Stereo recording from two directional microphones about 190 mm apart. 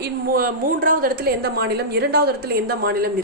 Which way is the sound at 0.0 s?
50° right (ahead or behind).